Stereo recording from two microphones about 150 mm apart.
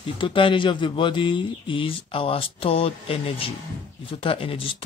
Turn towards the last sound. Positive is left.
turn(degrees=35)  # may be behind; listen again after turning